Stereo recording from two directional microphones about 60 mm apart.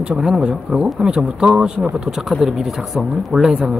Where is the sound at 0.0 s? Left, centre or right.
Centre.